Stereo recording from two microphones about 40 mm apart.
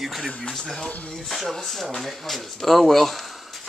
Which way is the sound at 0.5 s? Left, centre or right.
Centre.